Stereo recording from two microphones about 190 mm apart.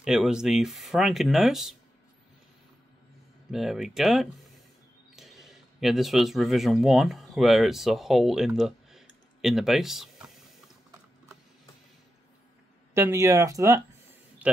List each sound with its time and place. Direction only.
0.0 s speech: 5° right (ahead or behind)
3.5 s speech: centre (ahead or behind)
12.9 s speech: 15° right (ahead or behind)
14.4 s a sound: 5° right (ahead or behind)